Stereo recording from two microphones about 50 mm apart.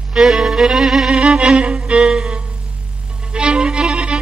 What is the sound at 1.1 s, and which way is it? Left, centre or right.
Music, centre.